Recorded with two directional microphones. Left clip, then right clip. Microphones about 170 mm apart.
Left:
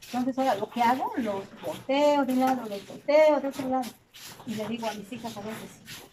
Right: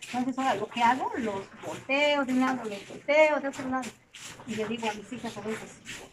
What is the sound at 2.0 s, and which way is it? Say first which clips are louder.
Speech: left 3 dB; 15° left (ahead or behind).